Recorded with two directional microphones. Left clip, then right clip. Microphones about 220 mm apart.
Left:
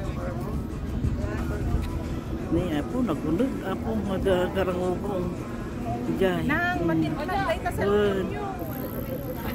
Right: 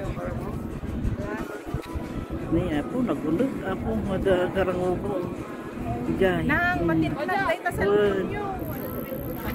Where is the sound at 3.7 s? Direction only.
5° left (ahead or behind).